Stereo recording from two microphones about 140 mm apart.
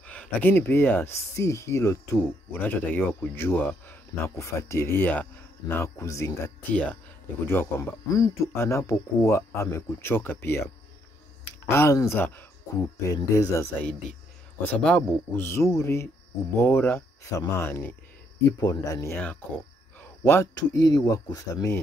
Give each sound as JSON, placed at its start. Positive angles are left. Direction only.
{"t": 0.0, "sound": "speech", "side_deg": 10}
{"t": 11.7, "sound": "speech", "side_deg": 20}
{"t": 14.8, "sound": "speech", "side_deg": 5}